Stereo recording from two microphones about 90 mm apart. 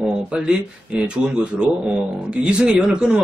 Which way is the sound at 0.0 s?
10° right (ahead or behind).